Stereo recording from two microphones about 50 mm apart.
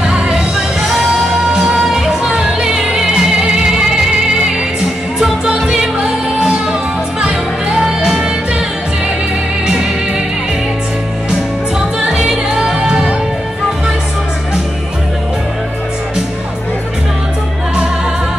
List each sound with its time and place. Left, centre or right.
0.0 s music: centre
5.4 s music: centre
12.0 s music: centre